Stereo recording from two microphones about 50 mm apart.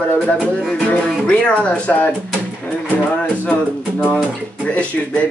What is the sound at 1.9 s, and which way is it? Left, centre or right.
Speech, left.